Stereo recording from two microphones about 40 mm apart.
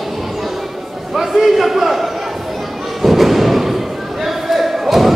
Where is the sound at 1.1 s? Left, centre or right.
Centre.